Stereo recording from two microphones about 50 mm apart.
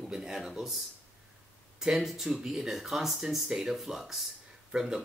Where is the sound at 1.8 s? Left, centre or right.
Centre.